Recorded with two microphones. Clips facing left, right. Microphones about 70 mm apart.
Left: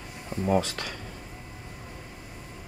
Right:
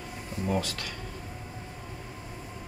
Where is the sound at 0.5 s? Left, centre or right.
Left.